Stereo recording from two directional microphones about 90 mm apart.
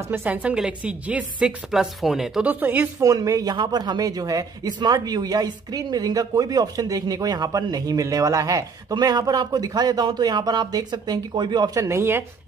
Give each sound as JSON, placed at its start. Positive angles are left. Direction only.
{"t": 0.1, "sound": "a woman's voice", "side_deg": -20}
{"t": 2.4, "sound": "speech", "side_deg": -20}
{"t": 3.0, "sound": "speech", "side_deg": -40}
{"t": 4.7, "sound": "speech", "side_deg": -50}
{"t": 8.9, "sound": "speech", "side_deg": -50}
{"t": 11.7, "sound": "speech", "side_deg": -35}